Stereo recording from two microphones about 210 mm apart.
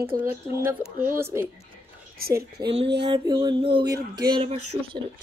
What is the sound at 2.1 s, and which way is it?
Speech, 45° right (ahead or behind).